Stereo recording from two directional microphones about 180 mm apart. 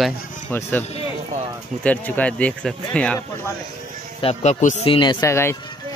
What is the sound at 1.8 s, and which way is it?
Speech, 10° left (ahead or behind).